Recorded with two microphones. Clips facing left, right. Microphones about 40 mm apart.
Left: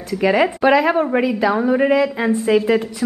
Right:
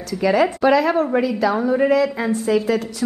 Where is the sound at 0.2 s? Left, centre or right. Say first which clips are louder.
Left 1 dB; left.